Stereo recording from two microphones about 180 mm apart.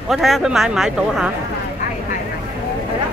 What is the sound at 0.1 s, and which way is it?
Speech, centre (ahead or behind).